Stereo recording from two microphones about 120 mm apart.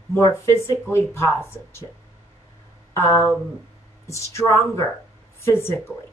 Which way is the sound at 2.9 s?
25° left (ahead or behind).